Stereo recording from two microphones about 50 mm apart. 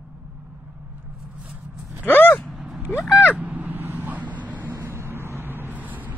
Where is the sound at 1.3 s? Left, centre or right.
Right.